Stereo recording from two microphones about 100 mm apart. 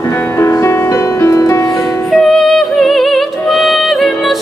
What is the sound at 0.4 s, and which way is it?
Music, 25° left (ahead or behind).